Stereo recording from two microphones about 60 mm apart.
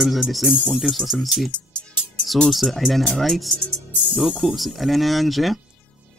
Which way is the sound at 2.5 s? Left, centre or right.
Centre.